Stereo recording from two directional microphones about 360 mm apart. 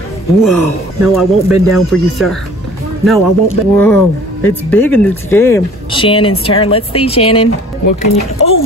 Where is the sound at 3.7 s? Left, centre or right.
Centre.